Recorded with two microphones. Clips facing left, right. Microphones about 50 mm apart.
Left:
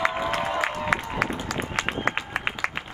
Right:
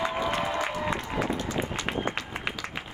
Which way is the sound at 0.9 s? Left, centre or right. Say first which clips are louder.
Left 7 dB; left.